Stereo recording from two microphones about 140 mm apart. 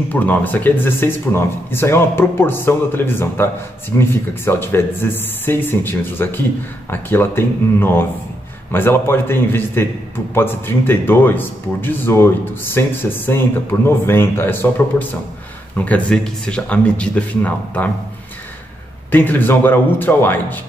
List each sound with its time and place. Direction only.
0.1 s speech: 10° left (ahead or behind)
19.1 s speech: 15° left (ahead or behind)